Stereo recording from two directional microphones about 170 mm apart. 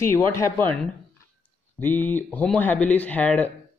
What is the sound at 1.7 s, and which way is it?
A man's voice, 10° left (ahead or behind).